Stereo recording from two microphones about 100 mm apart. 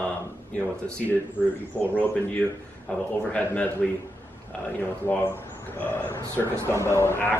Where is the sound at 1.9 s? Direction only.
15° left (ahead or behind).